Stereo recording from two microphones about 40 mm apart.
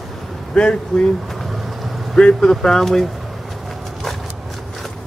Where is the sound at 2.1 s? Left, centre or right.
Centre.